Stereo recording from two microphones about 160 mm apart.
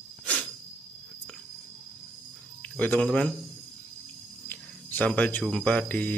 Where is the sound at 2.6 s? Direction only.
10° left (ahead or behind).